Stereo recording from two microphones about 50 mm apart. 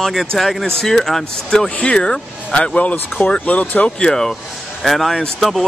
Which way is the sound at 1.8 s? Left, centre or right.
Left.